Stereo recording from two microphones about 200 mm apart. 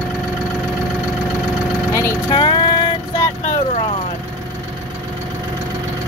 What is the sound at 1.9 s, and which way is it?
Vehicle, 20° left (ahead or behind).